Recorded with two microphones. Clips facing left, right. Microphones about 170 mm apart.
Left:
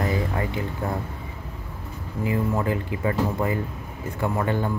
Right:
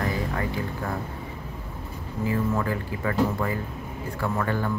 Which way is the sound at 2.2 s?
20° left (ahead or behind).